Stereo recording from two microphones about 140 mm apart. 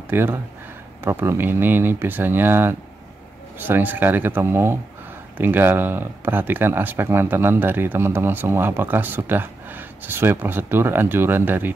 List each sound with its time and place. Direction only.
0.1 s speech: 15° right (ahead or behind)